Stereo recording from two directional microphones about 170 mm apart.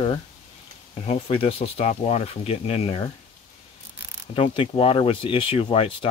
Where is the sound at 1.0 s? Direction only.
35° left (ahead or behind).